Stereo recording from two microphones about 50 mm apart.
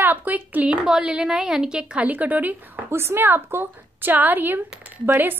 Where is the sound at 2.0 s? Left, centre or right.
Right.